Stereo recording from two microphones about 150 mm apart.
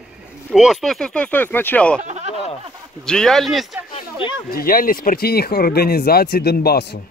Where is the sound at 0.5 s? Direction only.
Centre (ahead or behind).